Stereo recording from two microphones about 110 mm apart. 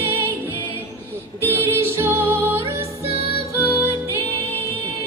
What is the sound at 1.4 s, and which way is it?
Music, 20° right (ahead or behind).